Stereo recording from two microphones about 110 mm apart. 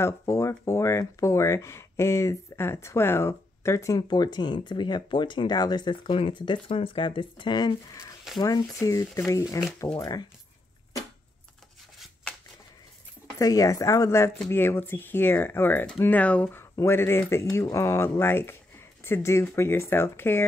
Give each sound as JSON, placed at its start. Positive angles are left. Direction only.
{"t": 0.0, "sound": "speech", "side_deg": 25}
{"t": 13.4, "sound": "speech", "side_deg": 30}